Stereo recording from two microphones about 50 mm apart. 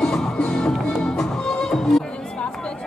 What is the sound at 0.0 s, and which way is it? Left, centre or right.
Music, centre.